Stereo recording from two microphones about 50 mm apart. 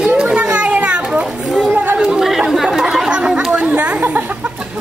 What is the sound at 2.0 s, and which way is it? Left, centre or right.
Chatter, centre.